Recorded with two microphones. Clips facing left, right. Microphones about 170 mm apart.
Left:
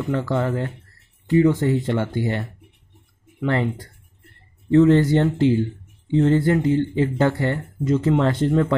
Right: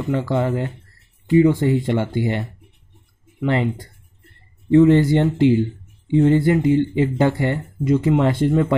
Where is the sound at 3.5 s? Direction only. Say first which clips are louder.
Right 2 dB; 15° right (ahead or behind).